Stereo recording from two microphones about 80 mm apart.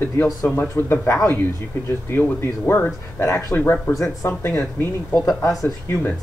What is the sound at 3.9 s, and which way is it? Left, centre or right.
Speech, left.